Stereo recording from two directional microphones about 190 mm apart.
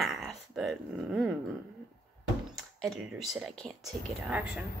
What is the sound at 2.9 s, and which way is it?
Speech, centre (ahead or behind).